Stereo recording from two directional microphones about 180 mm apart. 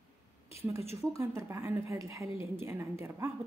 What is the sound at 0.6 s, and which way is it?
A woman's voice, 15° right (ahead or behind).